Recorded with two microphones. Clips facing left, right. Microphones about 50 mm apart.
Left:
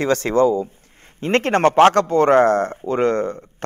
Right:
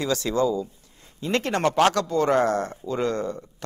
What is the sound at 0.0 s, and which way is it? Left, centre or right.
Speech, left.